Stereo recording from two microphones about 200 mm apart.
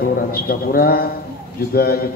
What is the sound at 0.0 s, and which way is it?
A man's voice, 45° left (ahead or behind).